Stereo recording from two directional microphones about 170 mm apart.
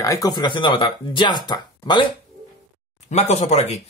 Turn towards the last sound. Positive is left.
turn(degrees=40)  # may be behind; listen again after turning